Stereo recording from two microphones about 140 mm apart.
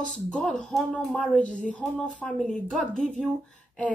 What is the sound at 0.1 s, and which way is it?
A woman's voice, centre (ahead or behind).